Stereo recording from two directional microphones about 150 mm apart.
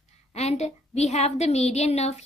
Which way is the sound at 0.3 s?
45° left (ahead or behind).